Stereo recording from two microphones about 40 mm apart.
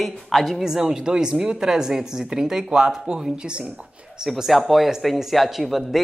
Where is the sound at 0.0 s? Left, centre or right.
Centre; by 3.7 s right.